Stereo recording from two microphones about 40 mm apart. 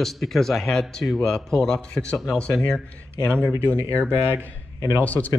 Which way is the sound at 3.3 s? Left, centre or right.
Left.